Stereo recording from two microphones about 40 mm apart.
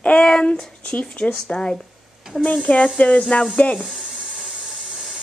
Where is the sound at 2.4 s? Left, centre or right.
Left.